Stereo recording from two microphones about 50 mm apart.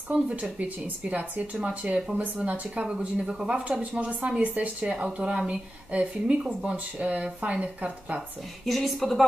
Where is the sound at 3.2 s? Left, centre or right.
Centre.